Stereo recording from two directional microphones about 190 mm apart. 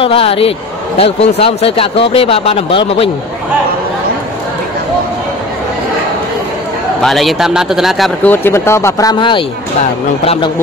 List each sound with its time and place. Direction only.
0.0 s a man's voice: 30° left (ahead or behind)
7.0 s a man's voice: centre (ahead or behind); by 10.5 s 30° left (ahead or behind)